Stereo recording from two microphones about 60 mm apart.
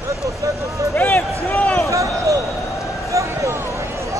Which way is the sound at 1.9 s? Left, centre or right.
Right.